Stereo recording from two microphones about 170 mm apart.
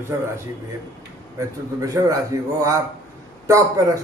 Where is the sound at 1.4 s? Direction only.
20° right (ahead or behind).